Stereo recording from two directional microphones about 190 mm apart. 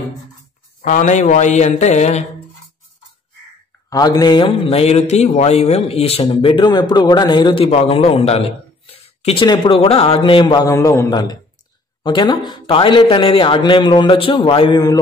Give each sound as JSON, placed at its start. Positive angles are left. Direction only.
{"t": 0.8, "sound": "a man's voice", "side_deg": 40}
{"t": 3.9, "sound": "a man's voice", "side_deg": 20}